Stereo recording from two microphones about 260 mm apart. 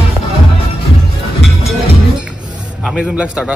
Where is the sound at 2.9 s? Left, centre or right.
Centre.